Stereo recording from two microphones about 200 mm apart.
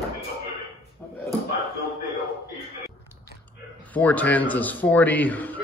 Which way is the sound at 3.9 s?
10° left (ahead or behind).